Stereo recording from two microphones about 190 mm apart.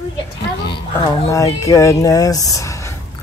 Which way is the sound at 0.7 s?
25° left (ahead or behind).